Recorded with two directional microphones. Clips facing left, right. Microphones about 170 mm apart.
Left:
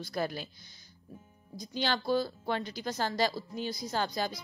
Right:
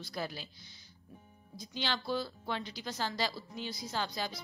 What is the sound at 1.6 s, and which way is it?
A woman's voice, 45° left (ahead or behind).